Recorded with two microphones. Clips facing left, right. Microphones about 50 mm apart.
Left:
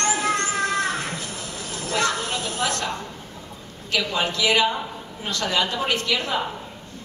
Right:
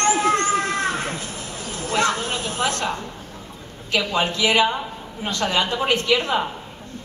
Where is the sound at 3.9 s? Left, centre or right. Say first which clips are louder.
Right 2 dB; right.